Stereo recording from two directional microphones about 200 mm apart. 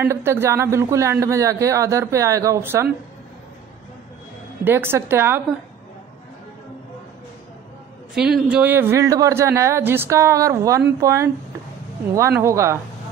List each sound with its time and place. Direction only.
0.0 s speech: 15° right (ahead or behind)
4.6 s speech: 10° right (ahead or behind)
8.1 s speech: 5° right (ahead or behind)